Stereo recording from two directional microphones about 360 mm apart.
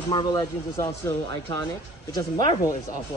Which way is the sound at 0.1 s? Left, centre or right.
Centre.